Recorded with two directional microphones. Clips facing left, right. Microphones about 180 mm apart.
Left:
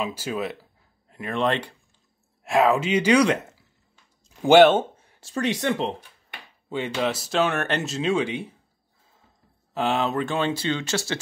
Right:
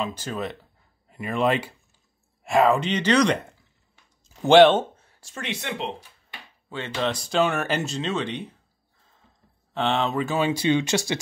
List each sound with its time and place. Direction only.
0.0 s speech: 10° left (ahead or behind)
5.2 s speech: 35° left (ahead or behind)
6.7 s speech: 10° left (ahead or behind)
9.8 s speech: 5° left (ahead or behind); by 11.1 s 15° right (ahead or behind)